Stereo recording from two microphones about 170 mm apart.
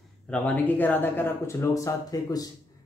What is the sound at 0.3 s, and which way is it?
Speech, 10° left (ahead or behind).